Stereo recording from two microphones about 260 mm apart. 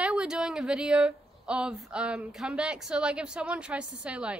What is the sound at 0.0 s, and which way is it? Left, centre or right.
A woman's voice, centre.